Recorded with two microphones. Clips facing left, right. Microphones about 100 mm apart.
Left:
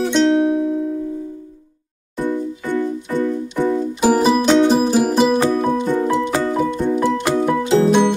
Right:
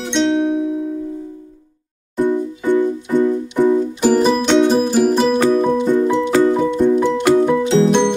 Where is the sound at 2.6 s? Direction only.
15° right (ahead or behind).